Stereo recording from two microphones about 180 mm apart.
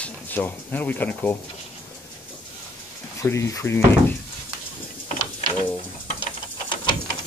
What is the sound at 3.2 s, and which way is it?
Speech, 15° left (ahead or behind).